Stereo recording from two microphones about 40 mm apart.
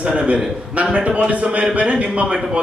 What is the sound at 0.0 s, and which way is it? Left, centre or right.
A man's voice, right.